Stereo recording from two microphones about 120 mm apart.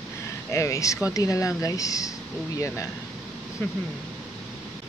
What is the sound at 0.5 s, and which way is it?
Speech, 25° left (ahead or behind).